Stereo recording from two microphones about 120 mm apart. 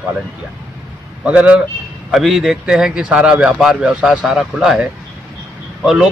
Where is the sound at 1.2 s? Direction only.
10° right (ahead or behind).